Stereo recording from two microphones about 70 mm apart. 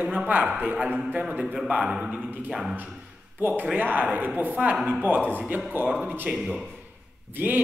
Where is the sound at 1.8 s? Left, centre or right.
Centre.